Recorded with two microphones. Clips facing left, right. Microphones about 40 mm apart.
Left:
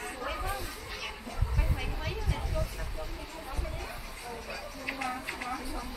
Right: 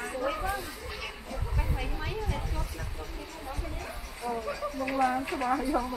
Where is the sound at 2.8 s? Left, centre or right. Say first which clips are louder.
Even; centre.